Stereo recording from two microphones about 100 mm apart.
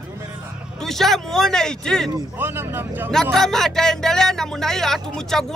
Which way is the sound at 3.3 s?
5° left (ahead or behind).